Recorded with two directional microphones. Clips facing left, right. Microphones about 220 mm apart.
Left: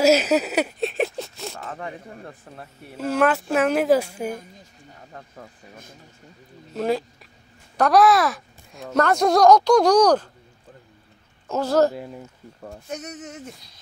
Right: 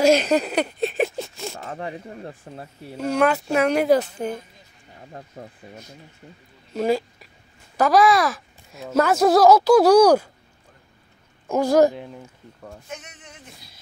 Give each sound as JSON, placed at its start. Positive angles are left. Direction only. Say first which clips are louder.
{"t": 0.0, "sound": "speech", "louder": "even", "side_deg": 5}
{"t": 1.7, "sound": "speech", "louder": "right 2 dB", "side_deg": -30}
{"t": 3.0, "sound": "speech", "louder": "even", "side_deg": 0}
{"t": 5.1, "sound": "speech", "louder": "right 4 dB", "side_deg": -30}
{"t": 6.7, "sound": "speech", "louder": "right 2 dB", "side_deg": 0}
{"t": 11.4, "sound": "speech", "louder": "right 3 dB", "side_deg": -15}
{"t": 11.9, "sound": "speech", "louder": "left 1 dB", "side_deg": 5}
{"t": 12.8, "sound": "speech", "louder": "left 6 dB", "side_deg": 40}